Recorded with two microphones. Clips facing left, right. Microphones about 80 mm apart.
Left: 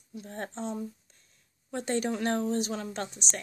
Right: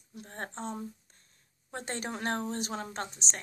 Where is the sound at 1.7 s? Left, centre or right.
Right.